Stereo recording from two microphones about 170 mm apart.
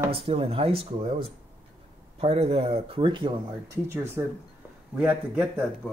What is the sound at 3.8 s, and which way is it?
Speech, 15° right (ahead or behind).